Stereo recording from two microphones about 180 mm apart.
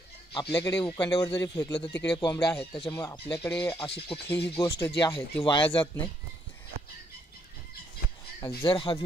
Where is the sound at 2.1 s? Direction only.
25° left (ahead or behind).